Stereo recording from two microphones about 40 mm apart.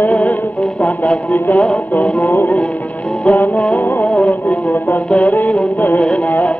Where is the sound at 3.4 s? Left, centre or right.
Left.